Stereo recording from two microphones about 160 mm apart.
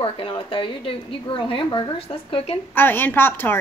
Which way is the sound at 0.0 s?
35° left (ahead or behind).